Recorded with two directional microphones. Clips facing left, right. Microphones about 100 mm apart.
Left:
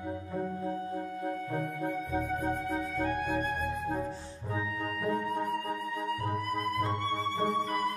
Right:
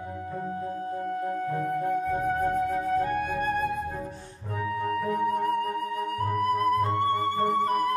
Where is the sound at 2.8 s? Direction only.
50° right (ahead or behind).